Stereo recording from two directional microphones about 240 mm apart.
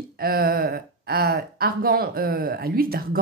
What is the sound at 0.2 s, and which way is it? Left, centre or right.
Speech, right.